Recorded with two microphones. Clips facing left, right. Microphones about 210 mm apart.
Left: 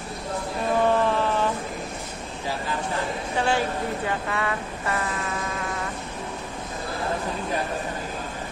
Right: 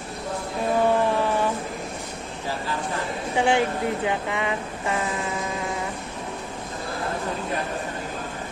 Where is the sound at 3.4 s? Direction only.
20° right (ahead or behind).